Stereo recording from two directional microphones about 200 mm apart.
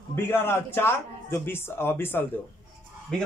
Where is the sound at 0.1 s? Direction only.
10° left (ahead or behind).